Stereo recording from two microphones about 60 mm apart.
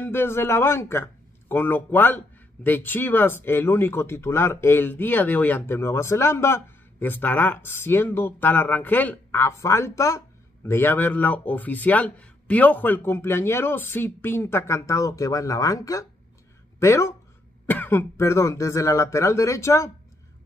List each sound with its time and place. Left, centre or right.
0.0 s speech: left
1.5 s speech: left
5.7 s speech: left
7.0 s speech: left
9.4 s speech: left
10.6 s a man's voice: left
13.0 s speech: left
14.9 s speech: left
16.8 s speech: left
17.6 s speech: left
18.2 s speech: left